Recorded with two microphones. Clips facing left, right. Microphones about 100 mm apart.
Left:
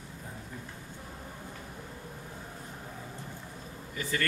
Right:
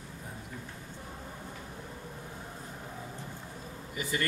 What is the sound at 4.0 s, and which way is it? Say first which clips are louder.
Speech: left 1 dB; 15° right (ahead or behind).